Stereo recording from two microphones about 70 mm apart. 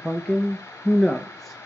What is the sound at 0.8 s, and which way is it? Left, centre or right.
Speech, left.